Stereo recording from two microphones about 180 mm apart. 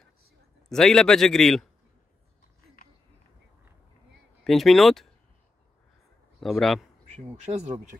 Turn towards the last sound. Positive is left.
turn(degrees=-35)  # may be behind; listen again after turning